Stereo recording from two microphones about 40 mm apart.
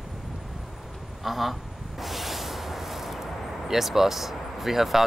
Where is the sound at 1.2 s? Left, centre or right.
Centre.